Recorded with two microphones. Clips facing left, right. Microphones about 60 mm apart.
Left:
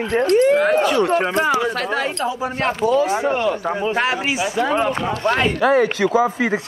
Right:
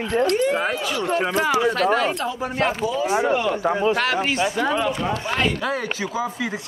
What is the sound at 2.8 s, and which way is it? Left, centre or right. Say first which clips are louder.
Speech: left 6 dB; left.